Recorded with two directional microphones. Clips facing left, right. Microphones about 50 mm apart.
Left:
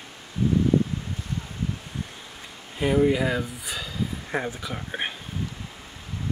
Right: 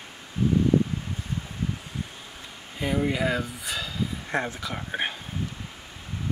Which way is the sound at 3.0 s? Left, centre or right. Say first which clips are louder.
Left 3 dB; centre.